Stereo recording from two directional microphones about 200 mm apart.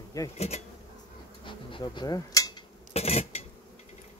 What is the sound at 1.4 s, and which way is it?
Bee, 25° left (ahead or behind).